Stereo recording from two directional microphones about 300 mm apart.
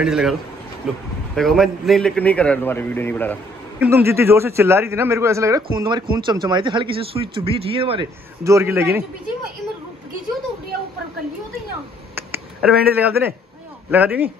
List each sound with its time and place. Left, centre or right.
0.0 s a man's voice: centre
3.8 s a man's voice: centre
12.2 s a sound: centre
13.0 s a man's voice: centre